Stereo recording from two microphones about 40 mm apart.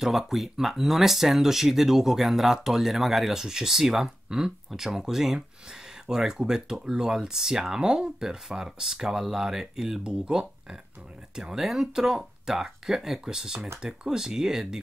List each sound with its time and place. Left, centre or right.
0.0 s speech: centre
10.0 s speech: right